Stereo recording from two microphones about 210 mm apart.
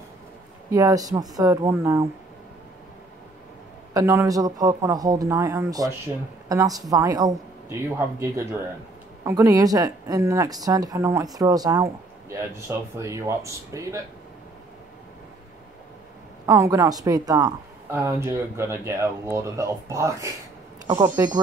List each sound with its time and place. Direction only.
0.7 s speech: 15° right (ahead or behind)
3.9 s speech: 15° right (ahead or behind)
16.4 s speech: 15° right (ahead or behind)